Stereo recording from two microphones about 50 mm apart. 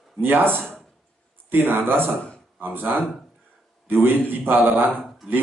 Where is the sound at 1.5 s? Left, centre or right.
Right.